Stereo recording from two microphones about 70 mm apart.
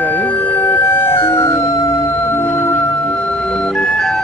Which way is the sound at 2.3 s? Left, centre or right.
Left.